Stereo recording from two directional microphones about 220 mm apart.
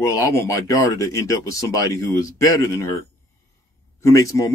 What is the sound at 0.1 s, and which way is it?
Speech, 15° left (ahead or behind).